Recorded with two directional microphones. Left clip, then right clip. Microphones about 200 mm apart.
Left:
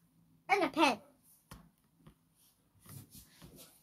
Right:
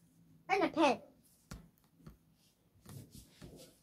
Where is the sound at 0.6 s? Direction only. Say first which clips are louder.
Even; centre (ahead or behind).